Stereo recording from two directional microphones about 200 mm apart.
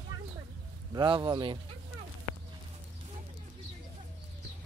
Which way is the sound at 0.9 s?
25° right (ahead or behind).